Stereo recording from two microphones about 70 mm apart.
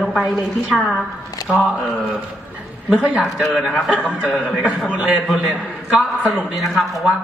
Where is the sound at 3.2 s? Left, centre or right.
Centre.